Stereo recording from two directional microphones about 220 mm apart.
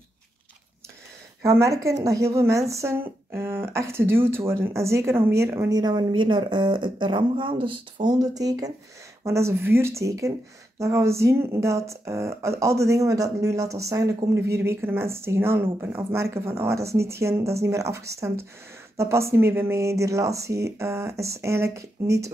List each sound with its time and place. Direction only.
1.4 s a woman's voice: 15° right (ahead or behind)